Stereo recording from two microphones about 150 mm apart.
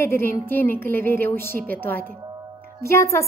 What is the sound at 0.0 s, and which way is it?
A woman's voice, 15° left (ahead or behind).